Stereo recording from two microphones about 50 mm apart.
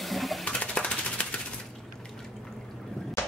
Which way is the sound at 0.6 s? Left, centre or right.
Left.